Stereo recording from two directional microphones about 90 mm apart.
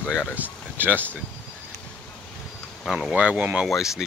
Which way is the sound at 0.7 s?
20° right (ahead or behind).